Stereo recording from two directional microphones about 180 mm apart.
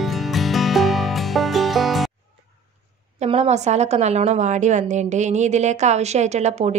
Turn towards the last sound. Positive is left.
turn(degrees=-40)  # may be behind; listen again after turning